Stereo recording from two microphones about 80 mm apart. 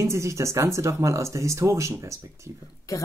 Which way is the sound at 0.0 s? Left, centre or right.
Right.